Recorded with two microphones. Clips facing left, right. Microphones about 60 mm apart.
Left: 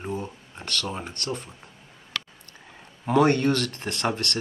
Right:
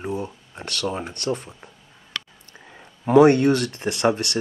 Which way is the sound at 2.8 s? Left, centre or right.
Centre.